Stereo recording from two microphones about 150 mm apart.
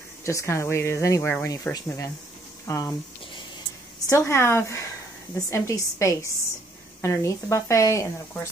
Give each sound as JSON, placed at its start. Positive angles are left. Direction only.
{"t": 0.2, "sound": "a woman's voice", "side_deg": 20}
{"t": 4.1, "sound": "a woman's voice", "side_deg": 15}